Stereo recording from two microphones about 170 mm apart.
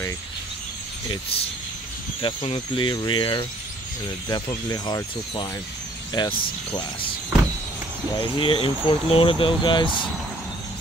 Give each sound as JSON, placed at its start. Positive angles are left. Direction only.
{"t": 2.2, "sound": "speech", "side_deg": 30}
{"t": 8.2, "sound": "speech", "side_deg": 30}